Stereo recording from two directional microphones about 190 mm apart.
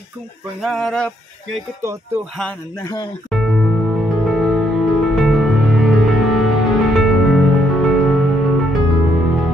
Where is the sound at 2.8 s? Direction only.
20° left (ahead or behind).